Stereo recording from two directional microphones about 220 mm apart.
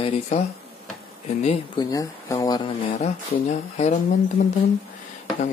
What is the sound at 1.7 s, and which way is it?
Speech, 15° left (ahead or behind).